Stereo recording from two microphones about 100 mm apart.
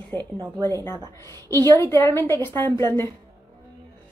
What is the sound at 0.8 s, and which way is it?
A woman's voice, 25° left (ahead or behind).